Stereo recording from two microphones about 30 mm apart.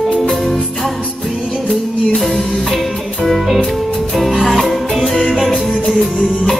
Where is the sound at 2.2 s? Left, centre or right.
Centre.